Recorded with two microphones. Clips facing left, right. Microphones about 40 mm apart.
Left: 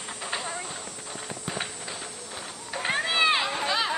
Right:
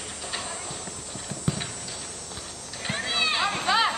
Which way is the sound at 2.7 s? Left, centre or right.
Centre.